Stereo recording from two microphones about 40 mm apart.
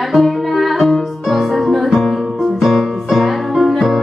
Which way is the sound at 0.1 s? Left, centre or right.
Centre.